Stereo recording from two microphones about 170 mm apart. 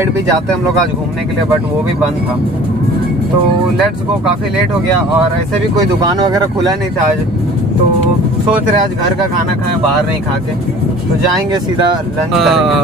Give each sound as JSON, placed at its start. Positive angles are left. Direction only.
{"t": 5.8, "sound": "speech", "side_deg": -20}
{"t": 12.4, "sound": "speech", "side_deg": 0}